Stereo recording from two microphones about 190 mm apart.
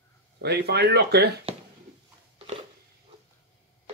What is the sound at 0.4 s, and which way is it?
Speech, 60° right (ahead or behind).